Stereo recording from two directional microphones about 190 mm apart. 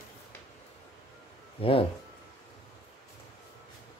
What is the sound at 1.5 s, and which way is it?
Speech, 30° left (ahead or behind).